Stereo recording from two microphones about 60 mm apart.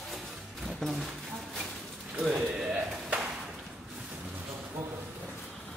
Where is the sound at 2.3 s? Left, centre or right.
Right.